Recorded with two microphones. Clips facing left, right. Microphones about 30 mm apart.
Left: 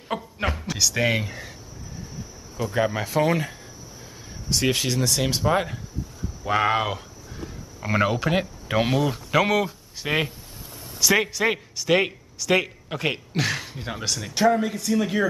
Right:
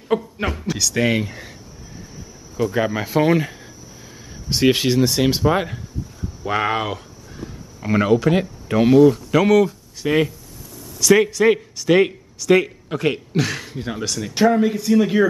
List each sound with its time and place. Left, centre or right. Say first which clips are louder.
0.1 s speech: right 6 dB; centre
2.5 s speech: right 4 dB; centre
4.5 s speech: right 6 dB; right; by 14.3 s centre
14.3 s speech: right 4 dB; centre